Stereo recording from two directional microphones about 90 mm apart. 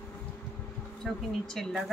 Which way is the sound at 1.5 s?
5° left (ahead or behind).